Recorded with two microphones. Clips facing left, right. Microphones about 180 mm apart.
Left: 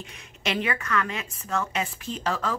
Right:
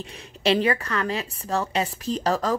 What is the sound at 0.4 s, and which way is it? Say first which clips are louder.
A woman's voice: right 7 dB; 35° right (ahead or behind).